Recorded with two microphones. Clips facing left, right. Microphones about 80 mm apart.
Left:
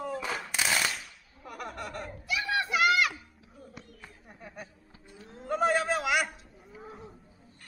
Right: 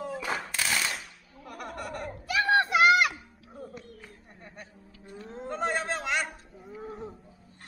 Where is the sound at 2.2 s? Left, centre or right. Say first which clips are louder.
Right 7 dB; right.